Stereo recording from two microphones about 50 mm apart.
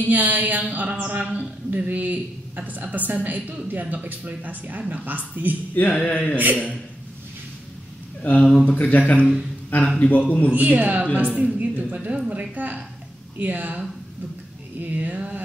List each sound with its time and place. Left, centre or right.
0.0 s speech: right
5.8 s a man's voice: left
8.4 s speech: centre
8.6 s a man's voice: left
10.5 s a woman's voice: right